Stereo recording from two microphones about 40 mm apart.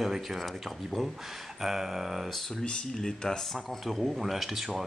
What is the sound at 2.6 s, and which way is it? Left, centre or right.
Speech, centre.